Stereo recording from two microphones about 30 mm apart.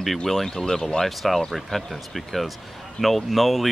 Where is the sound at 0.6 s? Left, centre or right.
Centre.